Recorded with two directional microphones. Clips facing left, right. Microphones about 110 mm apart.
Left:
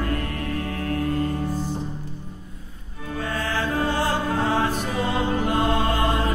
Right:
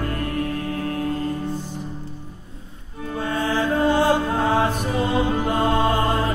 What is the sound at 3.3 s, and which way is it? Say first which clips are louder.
Mantra: right 4 dB; 15° right (ahead or behind).